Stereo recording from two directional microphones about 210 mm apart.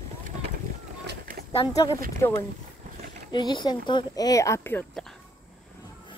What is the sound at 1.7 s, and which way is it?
Speech, 15° left (ahead or behind).